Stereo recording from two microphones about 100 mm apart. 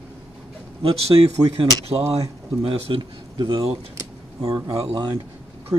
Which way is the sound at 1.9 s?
50° right (ahead or behind).